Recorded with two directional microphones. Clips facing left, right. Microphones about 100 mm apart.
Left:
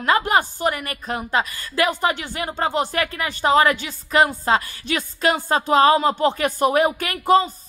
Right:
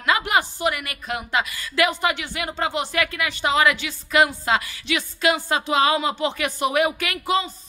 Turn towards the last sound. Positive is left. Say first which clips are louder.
# left 6 dB
turn(degrees=45)  # may be behind; listen again after turning